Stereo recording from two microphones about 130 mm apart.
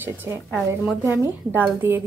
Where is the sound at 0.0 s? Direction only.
15° right (ahead or behind).